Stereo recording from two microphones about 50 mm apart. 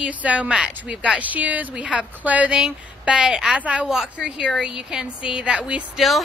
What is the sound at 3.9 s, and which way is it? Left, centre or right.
A woman's voice, centre.